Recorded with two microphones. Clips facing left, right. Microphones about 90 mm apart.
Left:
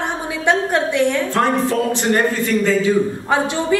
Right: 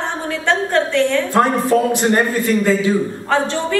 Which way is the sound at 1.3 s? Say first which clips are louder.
Right 3 dB; 15° right (ahead or behind).